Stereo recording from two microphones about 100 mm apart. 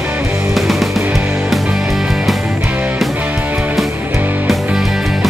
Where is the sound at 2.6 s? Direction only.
15° right (ahead or behind).